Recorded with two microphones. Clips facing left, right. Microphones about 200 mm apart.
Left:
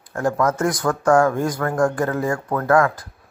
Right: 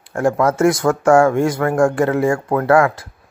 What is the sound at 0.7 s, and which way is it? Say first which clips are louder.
Speech: right 6 dB; 25° right (ahead or behind).